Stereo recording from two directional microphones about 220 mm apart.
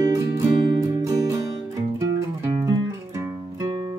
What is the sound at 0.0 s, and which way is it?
Music, 15° right (ahead or behind).